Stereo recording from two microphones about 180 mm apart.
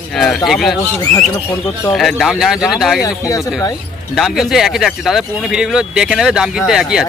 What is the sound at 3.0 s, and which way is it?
Speech, 20° left (ahead or behind).